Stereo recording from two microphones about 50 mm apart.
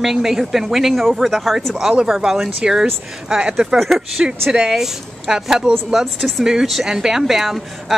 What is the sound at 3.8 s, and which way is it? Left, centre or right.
A woman's voice, centre.